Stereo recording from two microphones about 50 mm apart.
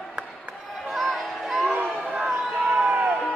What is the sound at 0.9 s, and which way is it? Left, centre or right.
Music, centre.